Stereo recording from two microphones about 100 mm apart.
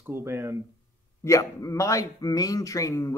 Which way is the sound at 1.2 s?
30° left (ahead or behind).